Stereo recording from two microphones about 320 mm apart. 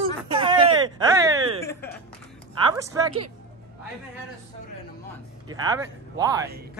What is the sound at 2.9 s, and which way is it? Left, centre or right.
Speech, centre.